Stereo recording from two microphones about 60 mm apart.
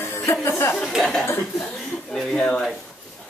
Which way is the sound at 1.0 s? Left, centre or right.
Centre.